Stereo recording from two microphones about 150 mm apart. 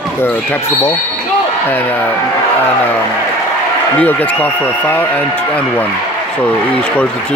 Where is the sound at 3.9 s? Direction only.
10° left (ahead or behind).